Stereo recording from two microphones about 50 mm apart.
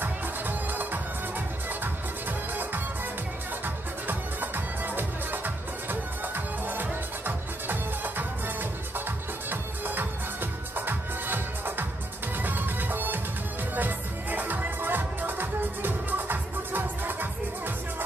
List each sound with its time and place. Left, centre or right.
0.0 s music: right
2.5 s music: right
9.5 s music: right